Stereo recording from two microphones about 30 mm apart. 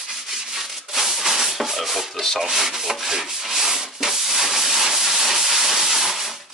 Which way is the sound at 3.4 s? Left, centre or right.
Centre.